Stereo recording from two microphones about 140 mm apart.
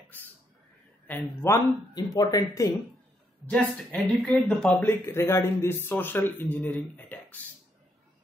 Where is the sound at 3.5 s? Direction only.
10° left (ahead or behind).